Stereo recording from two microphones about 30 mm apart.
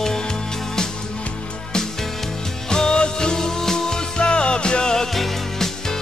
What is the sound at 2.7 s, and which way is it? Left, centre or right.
Music, left.